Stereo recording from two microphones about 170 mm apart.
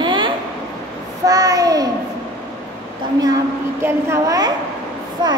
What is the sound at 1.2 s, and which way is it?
Child singing, 20° right (ahead or behind).